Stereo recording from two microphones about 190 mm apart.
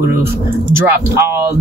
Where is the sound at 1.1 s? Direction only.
15° right (ahead or behind).